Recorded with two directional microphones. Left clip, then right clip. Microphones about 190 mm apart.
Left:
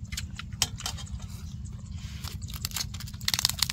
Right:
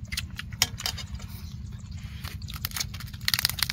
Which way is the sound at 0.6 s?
20° right (ahead or behind).